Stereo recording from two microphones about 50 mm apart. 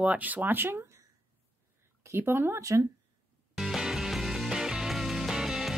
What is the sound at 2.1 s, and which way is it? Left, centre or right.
Speech, right.